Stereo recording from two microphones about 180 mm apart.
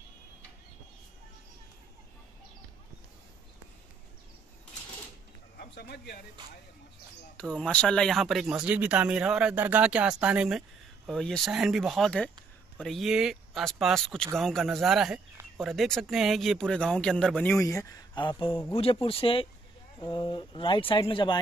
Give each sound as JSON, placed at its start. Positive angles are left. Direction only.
{"t": 5.6, "sound": "a sound", "side_deg": 65}
{"t": 7.5, "sound": "speech", "side_deg": 5}
{"t": 17.6, "sound": "speech", "side_deg": 20}